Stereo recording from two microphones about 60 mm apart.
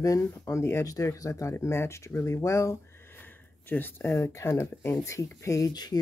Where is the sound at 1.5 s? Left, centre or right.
Left.